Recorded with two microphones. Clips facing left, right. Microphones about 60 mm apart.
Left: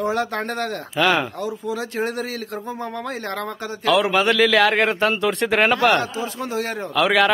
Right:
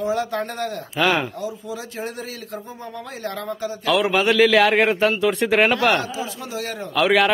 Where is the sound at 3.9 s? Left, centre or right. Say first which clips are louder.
Left 1 dB; centre.